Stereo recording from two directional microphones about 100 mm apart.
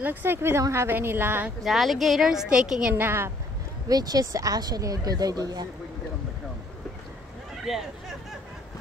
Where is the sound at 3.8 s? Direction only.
40° right (ahead or behind).